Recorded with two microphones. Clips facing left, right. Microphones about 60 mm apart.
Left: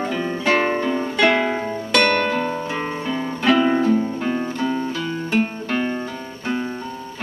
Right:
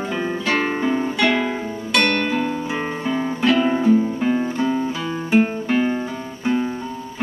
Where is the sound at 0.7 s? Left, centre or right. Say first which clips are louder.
Even; centre.